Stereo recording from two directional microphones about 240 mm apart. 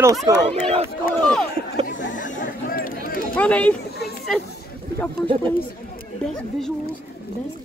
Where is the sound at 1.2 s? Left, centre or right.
Centre.